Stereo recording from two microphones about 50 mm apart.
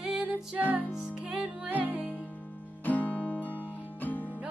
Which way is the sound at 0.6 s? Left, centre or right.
Right.